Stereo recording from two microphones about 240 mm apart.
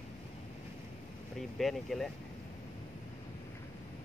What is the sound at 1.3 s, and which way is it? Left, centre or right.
Speech, centre.